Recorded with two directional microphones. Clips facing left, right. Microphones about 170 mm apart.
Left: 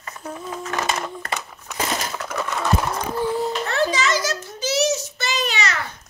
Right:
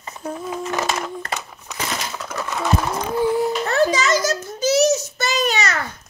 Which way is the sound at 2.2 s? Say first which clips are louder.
Even; 5° right (ahead or behind).